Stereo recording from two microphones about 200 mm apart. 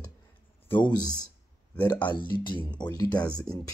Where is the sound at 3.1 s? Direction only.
5° left (ahead or behind).